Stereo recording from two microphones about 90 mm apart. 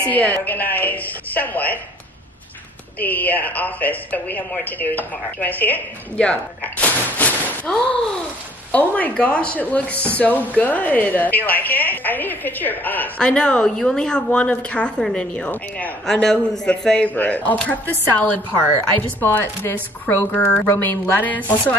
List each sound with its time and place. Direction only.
0.0 s speech: 15° left (ahead or behind)
3.0 s speech: 20° left (ahead or behind)
13.2 s a woman's voice: 10° left (ahead or behind)
16.1 s a woman's voice: 5° left (ahead or behind)